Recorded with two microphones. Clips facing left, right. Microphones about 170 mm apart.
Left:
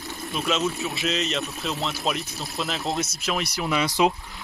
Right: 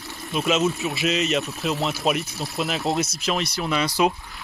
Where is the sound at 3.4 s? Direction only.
15° left (ahead or behind).